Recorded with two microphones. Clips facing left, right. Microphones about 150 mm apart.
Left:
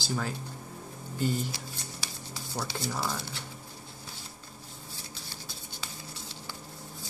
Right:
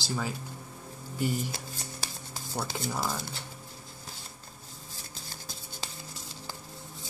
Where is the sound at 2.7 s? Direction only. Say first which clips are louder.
Left 1 dB; 10° right (ahead or behind).